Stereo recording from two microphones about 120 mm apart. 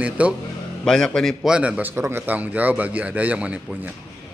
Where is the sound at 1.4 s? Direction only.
10° right (ahead or behind).